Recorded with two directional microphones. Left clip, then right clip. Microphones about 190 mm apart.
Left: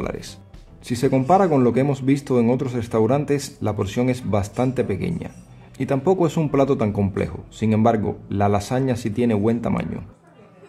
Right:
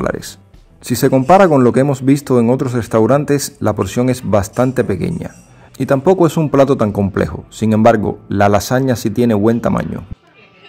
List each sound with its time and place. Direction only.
0.0 s music: 25° right (ahead or behind)
0.8 s speech: 30° right (ahead or behind)